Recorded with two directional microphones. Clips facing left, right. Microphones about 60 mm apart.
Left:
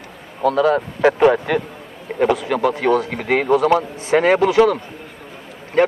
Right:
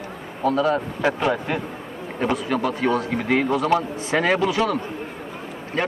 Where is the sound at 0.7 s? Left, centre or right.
Left.